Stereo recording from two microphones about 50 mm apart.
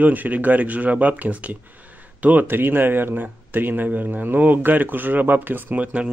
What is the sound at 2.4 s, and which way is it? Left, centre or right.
Speech, right.